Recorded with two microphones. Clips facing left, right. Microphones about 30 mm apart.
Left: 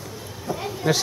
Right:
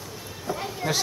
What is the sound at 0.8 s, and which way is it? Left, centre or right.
Speech, centre.